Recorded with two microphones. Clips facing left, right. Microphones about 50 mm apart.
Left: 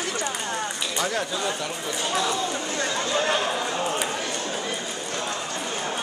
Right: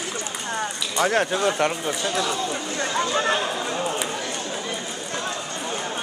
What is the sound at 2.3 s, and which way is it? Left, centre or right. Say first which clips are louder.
Speech: even; centre.